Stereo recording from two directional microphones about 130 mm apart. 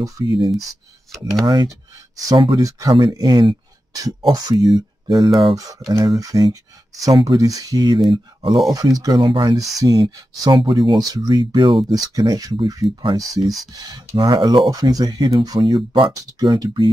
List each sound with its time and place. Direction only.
0.0 s speech: 30° right (ahead or behind)